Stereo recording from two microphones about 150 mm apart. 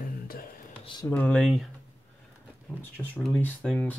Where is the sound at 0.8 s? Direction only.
30° left (ahead or behind).